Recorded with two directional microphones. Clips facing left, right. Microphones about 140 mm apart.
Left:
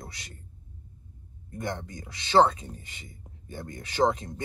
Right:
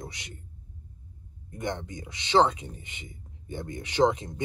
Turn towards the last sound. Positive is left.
turn(degrees=-20)  # may be behind; listen again after turning